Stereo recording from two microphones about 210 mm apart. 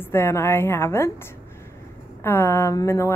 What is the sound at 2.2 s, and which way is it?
Speech, 10° left (ahead or behind).